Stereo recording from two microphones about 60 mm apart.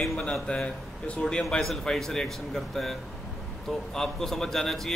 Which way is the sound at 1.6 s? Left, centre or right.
Centre.